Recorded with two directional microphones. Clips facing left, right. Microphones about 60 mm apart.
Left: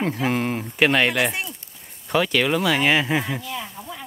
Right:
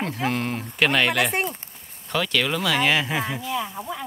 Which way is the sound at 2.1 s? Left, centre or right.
Centre.